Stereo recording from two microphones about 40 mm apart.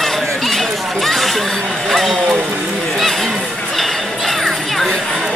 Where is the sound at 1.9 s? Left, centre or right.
Centre.